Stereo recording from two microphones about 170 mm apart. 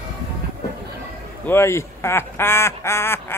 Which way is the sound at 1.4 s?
15° left (ahead or behind).